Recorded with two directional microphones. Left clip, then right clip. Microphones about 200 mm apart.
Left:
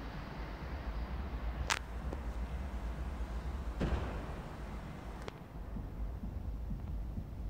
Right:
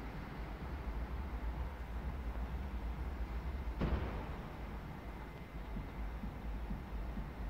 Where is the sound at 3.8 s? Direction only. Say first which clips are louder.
Left 2 dB; 45° left (ahead or behind).